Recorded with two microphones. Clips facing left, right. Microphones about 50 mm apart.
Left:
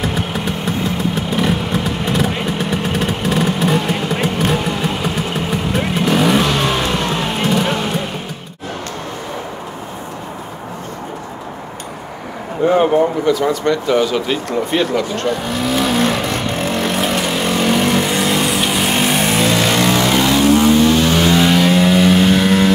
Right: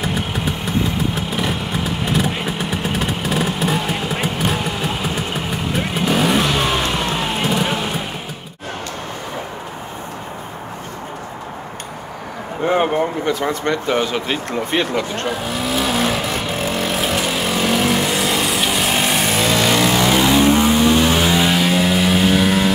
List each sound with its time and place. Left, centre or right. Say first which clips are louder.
0.0 s vehicle: left 2 dB; centre
12.6 s a sound: left 4 dB; right
13.2 s speech: left 4 dB; right
15.2 s vehicle: left 3 dB; centre